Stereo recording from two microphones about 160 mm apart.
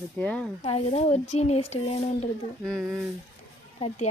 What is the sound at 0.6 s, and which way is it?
Speech, 40° left (ahead or behind).